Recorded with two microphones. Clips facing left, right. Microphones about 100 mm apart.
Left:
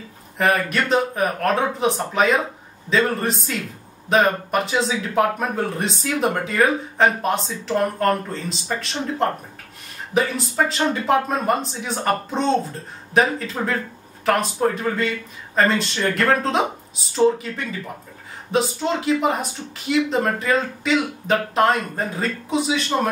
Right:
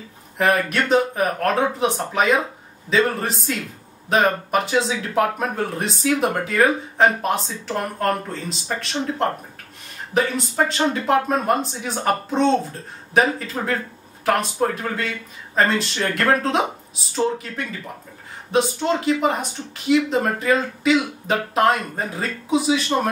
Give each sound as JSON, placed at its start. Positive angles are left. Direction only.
{"t": 0.4, "sound": "speech", "side_deg": 0}